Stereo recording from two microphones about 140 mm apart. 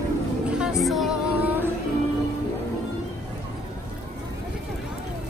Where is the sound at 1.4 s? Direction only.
15° right (ahead or behind).